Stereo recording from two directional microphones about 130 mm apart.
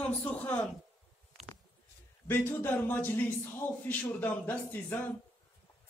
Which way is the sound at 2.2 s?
15° left (ahead or behind).